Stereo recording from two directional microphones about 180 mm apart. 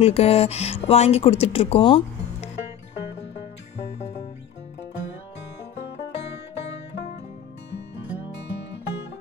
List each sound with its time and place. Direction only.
0.0 s speech: 35° left (ahead or behind)